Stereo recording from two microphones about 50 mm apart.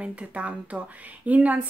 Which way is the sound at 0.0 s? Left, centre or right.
Right.